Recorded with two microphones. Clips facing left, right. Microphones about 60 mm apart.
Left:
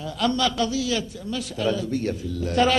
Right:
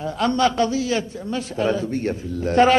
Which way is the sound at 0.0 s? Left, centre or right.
Right.